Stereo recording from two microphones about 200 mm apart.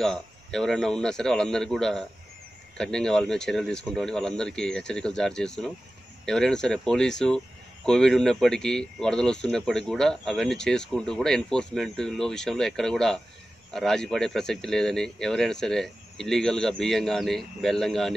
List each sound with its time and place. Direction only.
0.0 s speech: centre (ahead or behind)